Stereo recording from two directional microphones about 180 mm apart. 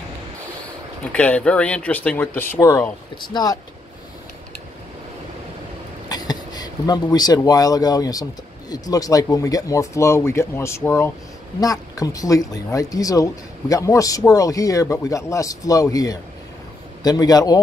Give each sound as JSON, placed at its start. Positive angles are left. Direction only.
{"t": 1.1, "sound": "speech", "side_deg": 5}
{"t": 6.0, "sound": "speech", "side_deg": 20}